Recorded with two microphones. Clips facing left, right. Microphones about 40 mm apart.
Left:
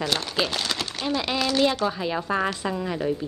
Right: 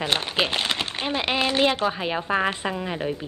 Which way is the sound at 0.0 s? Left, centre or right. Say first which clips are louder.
Right 2 dB; right.